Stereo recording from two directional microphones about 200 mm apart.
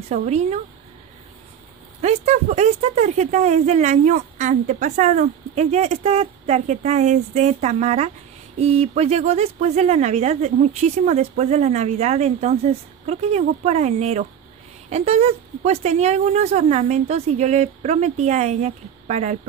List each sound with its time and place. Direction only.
0.1 s speech: 35° right (ahead or behind)
2.0 s speech: 35° right (ahead or behind)